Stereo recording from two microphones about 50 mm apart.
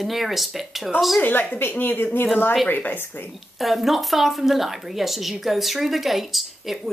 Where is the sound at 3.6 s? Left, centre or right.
Centre.